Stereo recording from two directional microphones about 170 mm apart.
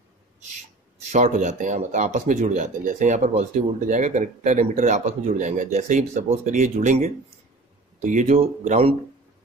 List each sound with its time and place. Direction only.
1.1 s speech: 45° right (ahead or behind)